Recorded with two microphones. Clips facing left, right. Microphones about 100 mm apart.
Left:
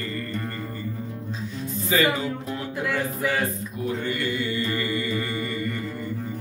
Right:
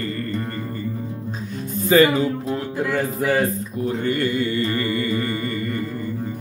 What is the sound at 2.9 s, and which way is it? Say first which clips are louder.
Mantra: right 5 dB; 40° right (ahead or behind).